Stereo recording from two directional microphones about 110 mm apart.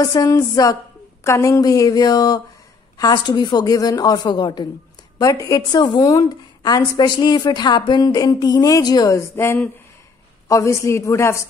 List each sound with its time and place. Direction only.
0.0 s a woman's voice: 30° left (ahead or behind)
5.7 s a woman's voice: 40° left (ahead or behind)
9.4 s a man's voice: 20° left (ahead or behind)